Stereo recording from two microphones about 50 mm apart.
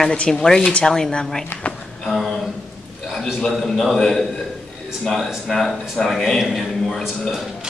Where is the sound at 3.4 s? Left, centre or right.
Centre.